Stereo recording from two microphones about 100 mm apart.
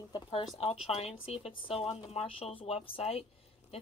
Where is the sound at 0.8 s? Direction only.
90° left.